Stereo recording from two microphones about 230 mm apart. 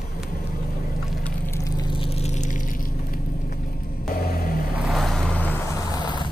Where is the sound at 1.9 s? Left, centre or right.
Left.